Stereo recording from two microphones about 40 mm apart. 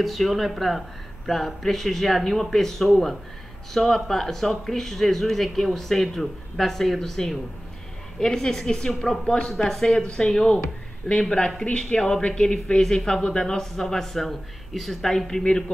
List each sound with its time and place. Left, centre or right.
0.0 s speech: centre